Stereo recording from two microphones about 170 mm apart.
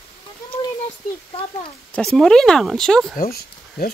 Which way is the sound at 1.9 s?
Centre (ahead or behind).